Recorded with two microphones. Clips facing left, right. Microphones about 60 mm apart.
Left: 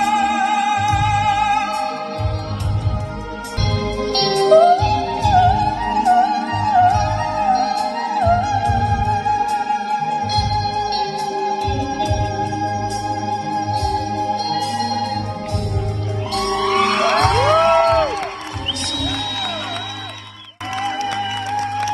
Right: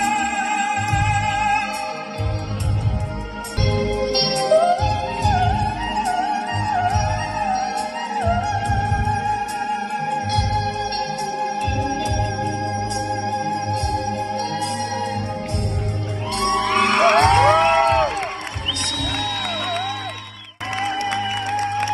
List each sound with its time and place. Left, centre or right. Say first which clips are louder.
0.0 s music: left 4 dB; right
3.6 s music: right 1 dB; right
4.3 s music: left 6 dB; left
4.6 s music: left 5 dB; right
5.4 s music: left 6 dB; left
9.9 s music: left 3 dB; right
16.4 s music: left 1 dB; right
20.8 s music: left 1 dB; right